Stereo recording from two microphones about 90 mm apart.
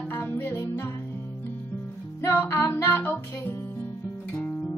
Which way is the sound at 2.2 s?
25° left (ahead or behind).